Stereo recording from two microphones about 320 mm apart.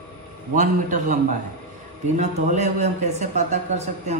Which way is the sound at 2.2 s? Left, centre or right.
Right.